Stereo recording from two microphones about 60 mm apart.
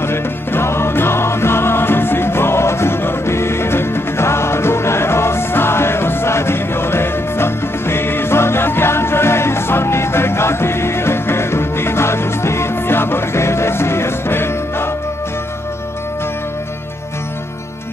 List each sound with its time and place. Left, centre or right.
0.0 s music: left